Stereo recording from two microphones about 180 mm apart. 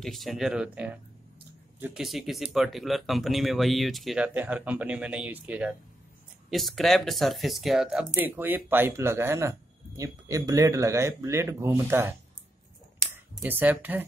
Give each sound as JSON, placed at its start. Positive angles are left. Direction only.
{"t": 0.0, "sound": "speech", "side_deg": 0}
{"t": 2.0, "sound": "speech", "side_deg": 0}
{"t": 13.4, "sound": "speech", "side_deg": -10}